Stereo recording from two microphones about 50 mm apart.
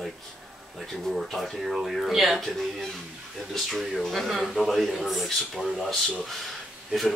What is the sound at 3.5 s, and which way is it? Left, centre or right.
Speech, centre.